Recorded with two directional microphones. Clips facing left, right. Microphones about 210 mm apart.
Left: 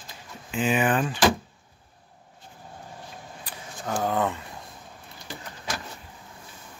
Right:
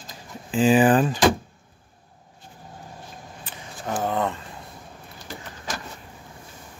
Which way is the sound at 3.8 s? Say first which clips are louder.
Right 1 dB; 5° right (ahead or behind).